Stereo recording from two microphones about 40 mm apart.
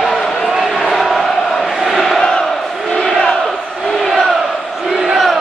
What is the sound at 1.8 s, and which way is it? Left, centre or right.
Crowd, centre.